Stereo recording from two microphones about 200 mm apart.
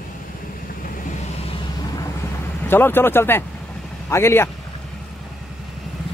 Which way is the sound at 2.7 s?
10° left (ahead or behind).